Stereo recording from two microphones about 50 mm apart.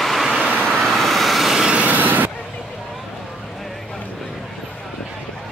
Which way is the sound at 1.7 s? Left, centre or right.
Right.